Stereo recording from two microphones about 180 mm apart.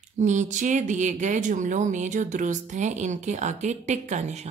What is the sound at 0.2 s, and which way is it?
Speech, 40° right (ahead or behind).